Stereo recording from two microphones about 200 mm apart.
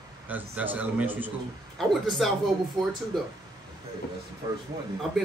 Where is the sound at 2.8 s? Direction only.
20° right (ahead or behind).